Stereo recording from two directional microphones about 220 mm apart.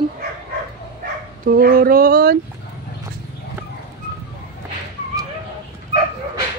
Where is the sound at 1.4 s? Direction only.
40° right (ahead or behind).